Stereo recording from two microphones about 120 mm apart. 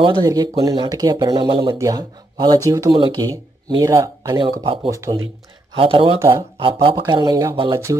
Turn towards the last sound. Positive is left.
turn(degrees=-45)  # may be behind; listen again after turning